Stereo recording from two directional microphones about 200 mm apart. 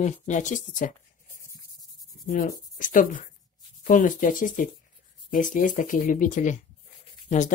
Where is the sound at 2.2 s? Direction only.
40° left (ahead or behind).